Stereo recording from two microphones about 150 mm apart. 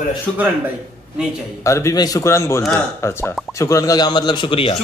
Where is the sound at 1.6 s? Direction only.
20° left (ahead or behind); by 4.7 s 35° left (ahead or behind).